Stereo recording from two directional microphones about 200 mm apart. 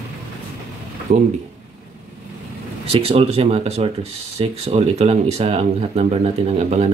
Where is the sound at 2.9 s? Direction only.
30° right (ahead or behind).